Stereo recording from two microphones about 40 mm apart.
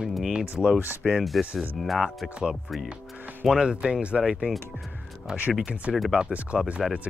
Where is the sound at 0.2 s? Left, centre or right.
Centre.